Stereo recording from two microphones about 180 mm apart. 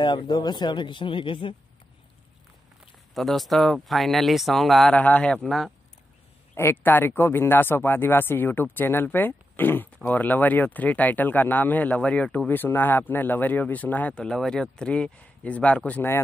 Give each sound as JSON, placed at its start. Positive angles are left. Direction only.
{"t": 0.0, "sound": "speech", "side_deg": 25}
{"t": 3.2, "sound": "speech", "side_deg": 0}